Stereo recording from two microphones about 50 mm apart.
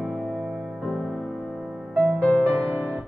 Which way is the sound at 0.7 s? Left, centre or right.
Centre.